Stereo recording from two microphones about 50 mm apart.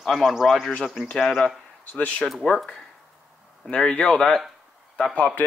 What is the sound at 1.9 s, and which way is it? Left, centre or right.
Speech, left.